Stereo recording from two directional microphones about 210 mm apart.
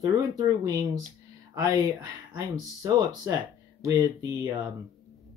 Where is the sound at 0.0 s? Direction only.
15° right (ahead or behind).